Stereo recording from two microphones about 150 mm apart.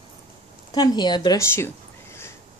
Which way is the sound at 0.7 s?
30° left (ahead or behind).